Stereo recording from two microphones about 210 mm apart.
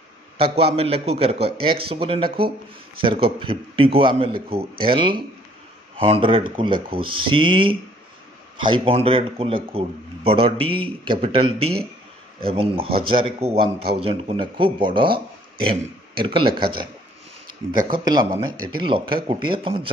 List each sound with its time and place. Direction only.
0.7 s speech: 30° right (ahead or behind)